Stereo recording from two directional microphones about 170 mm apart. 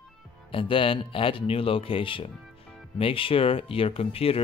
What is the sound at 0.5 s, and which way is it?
Speech, 30° left (ahead or behind).